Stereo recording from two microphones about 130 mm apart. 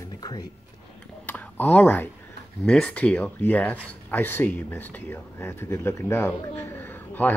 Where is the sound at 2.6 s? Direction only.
5° left (ahead or behind).